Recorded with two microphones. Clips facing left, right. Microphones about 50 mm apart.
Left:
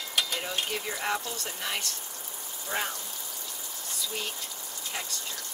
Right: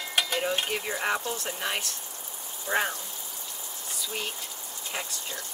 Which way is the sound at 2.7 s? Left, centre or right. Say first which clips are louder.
Right 5 dB; right.